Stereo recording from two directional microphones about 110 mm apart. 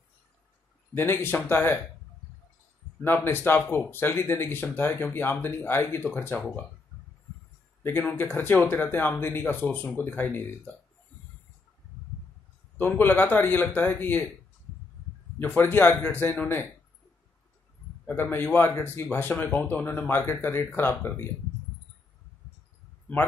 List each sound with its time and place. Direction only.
0.9 s speech: 20° left (ahead or behind)
3.0 s speech: 20° left (ahead or behind)
7.8 s a man's voice: 15° left (ahead or behind)
12.7 s a man's voice: 15° left (ahead or behind)
15.3 s speech: 20° left (ahead or behind)
18.0 s speech: 20° left (ahead or behind)